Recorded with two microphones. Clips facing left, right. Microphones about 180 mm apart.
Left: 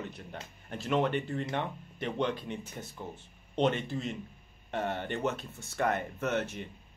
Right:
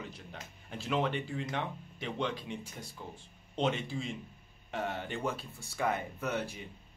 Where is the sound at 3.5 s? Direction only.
5° right (ahead or behind).